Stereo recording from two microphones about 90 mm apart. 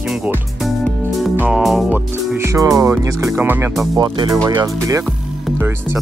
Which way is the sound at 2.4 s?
35° right (ahead or behind).